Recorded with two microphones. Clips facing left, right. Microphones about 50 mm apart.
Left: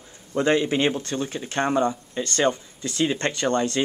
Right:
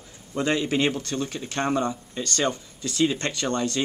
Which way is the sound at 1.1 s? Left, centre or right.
Centre.